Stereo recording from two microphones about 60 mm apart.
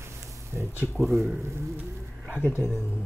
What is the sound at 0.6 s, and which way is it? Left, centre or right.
Speech, right.